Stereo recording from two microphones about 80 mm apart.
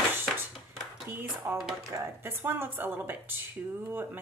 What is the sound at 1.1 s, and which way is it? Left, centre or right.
Speech, right.